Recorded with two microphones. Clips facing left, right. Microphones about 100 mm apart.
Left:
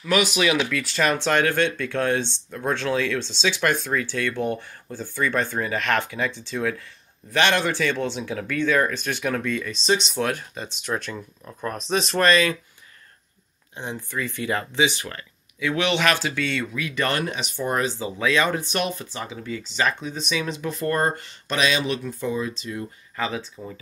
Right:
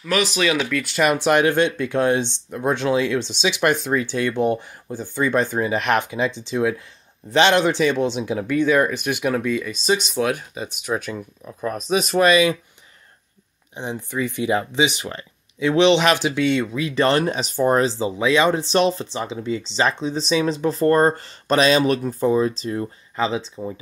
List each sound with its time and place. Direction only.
0.2 s speech: 15° left (ahead or behind)
0.7 s speech: centre (ahead or behind)
13.7 s speech: 20° right (ahead or behind); by 22.8 s 35° right (ahead or behind)
23.1 s speech: 20° right (ahead or behind)